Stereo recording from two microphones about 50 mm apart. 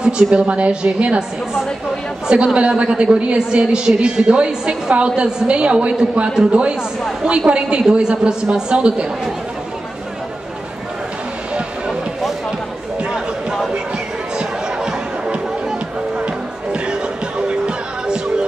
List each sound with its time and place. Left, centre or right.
0.0 s a woman's voice: right
2.2 s a woman's voice: centre
11.9 s music: centre
14.3 s music: centre